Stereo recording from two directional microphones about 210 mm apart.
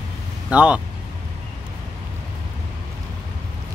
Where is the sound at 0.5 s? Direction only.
5° right (ahead or behind).